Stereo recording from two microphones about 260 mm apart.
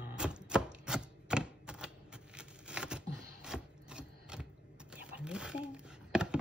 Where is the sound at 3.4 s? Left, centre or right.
Centre.